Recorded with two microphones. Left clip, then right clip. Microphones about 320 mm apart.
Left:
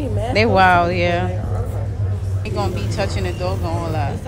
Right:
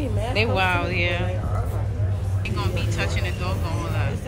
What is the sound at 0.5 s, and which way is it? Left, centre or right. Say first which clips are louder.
Speech: left 9 dB; left.